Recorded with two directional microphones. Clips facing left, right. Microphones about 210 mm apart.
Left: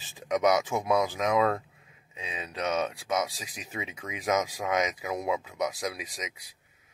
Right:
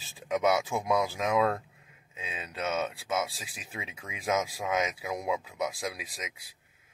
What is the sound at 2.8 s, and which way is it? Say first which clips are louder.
Speech: left 2 dB; 5° right (ahead or behind).